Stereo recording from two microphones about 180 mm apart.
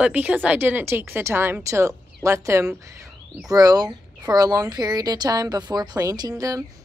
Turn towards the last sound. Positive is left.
turn(degrees=-20)  # may be behind; listen again after turning